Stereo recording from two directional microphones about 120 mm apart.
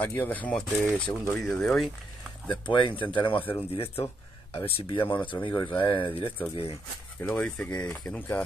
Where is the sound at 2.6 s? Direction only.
40° left (ahead or behind).